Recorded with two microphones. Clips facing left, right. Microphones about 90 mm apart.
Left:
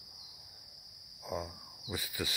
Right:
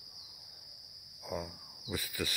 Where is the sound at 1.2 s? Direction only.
20° left (ahead or behind).